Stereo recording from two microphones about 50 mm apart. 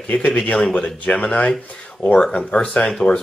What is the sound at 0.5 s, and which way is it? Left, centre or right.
Speech, centre.